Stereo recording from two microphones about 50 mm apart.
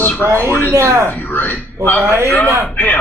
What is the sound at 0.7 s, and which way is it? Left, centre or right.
Speech, right.